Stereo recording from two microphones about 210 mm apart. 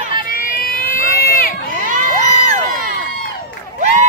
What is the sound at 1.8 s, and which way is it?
Crowd, 35° right (ahead or behind).